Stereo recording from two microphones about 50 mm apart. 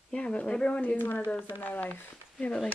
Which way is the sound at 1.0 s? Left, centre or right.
Left.